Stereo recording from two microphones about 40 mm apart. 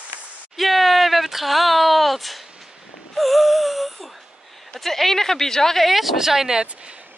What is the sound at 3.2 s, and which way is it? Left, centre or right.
Wheeze, centre.